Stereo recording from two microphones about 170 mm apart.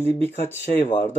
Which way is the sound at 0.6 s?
50° left (ahead or behind).